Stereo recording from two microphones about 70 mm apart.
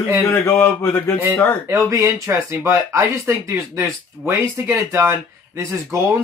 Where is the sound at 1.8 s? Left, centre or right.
Right.